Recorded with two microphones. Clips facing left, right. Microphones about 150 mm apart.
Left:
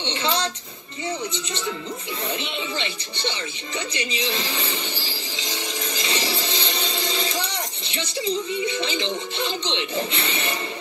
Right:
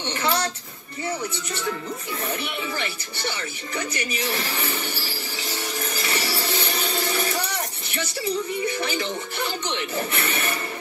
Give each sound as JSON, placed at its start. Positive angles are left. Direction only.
{"t": 0.0, "sound": "a sound", "side_deg": 20}
{"t": 2.3, "sound": "music", "side_deg": 25}
{"t": 7.9, "sound": "speech", "side_deg": 20}